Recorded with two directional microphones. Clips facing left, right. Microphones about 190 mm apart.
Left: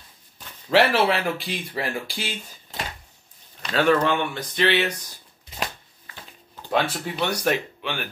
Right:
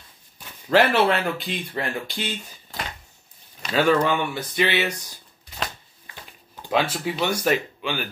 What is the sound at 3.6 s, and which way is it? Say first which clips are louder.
Speech: even; 5° right (ahead or behind).